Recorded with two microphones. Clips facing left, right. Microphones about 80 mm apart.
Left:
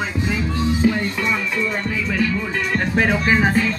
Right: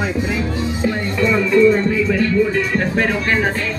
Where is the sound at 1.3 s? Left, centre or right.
Centre.